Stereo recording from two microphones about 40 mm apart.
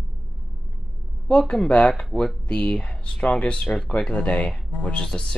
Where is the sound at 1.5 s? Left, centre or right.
Left.